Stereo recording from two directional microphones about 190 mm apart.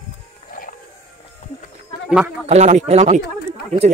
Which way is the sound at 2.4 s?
35° right (ahead or behind).